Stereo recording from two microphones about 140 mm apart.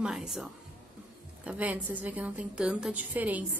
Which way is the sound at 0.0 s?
5° right (ahead or behind).